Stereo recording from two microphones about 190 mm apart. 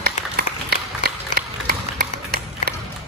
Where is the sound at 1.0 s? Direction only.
55° right (ahead or behind).